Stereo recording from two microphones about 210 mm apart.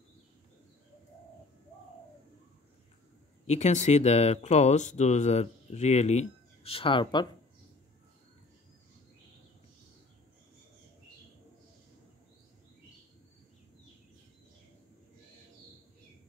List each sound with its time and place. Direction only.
3.4 s speech: 35° left (ahead or behind)